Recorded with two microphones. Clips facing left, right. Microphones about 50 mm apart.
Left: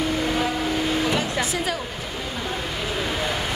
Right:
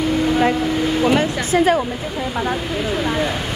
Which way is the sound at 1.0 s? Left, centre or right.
Right.